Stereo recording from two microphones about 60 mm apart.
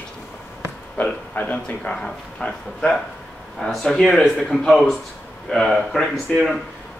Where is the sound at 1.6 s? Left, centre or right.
Centre.